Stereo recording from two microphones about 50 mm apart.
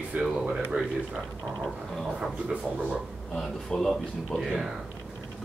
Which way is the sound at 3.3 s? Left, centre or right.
Centre.